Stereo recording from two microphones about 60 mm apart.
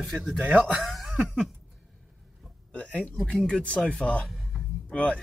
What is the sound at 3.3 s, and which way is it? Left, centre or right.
Speech, centre.